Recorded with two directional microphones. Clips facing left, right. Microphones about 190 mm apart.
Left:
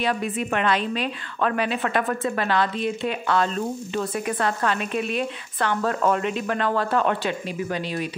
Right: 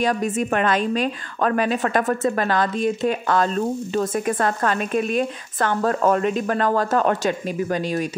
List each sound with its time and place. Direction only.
0.0 s a woman's voice: 45° right (ahead or behind)